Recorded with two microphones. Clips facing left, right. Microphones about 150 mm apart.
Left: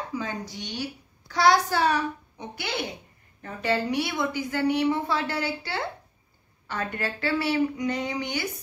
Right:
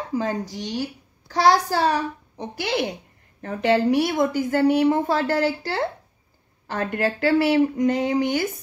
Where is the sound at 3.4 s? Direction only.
60° right (ahead or behind); by 8.5 s 45° right (ahead or behind).